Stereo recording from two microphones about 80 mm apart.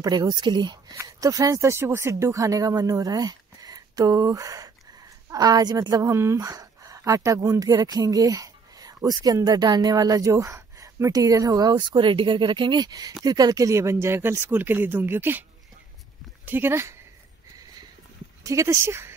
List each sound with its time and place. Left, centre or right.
0.1 s speech: right
1.0 s a woman's voice: right
11.7 s speech: right
16.4 s speech: right
18.4 s speech: right